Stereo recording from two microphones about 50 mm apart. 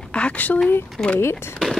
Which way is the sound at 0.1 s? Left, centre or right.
Left.